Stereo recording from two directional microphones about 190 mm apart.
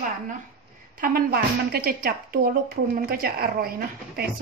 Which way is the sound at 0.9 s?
50° right (ahead or behind).